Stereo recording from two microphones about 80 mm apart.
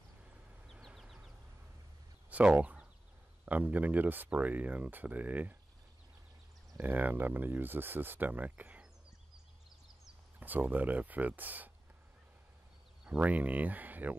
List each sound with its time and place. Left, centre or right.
0.7 s a sound: centre
2.2 s a sound: centre
3.4 s speech: right
6.8 s speech: right
10.4 s speech: right
13.0 s speech: centre